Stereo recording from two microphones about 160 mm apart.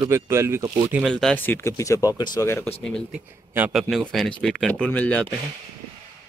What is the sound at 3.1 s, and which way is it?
A man's voice, 10° right (ahead or behind).